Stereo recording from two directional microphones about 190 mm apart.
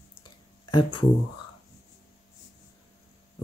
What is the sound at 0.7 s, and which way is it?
Speech, 25° left (ahead or behind).